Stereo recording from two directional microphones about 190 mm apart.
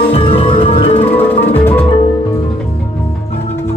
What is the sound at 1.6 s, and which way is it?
Music, 10° left (ahead or behind).